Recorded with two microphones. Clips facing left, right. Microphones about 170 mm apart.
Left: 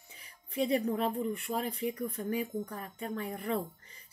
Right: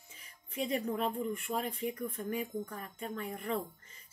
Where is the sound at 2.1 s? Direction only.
35° left (ahead or behind).